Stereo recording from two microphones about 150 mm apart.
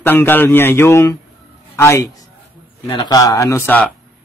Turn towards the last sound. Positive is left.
turn(degrees=15)  # may be behind; listen again after turning